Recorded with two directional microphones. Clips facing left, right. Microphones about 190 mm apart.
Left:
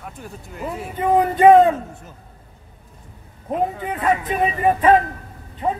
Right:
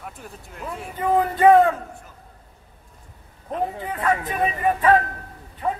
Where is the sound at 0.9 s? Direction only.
20° left (ahead or behind).